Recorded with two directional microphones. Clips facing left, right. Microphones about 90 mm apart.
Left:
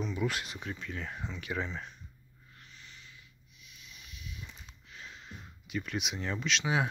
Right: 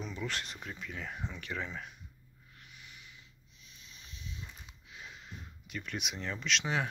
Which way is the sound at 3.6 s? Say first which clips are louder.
Left 2 dB; 35° right (ahead or behind).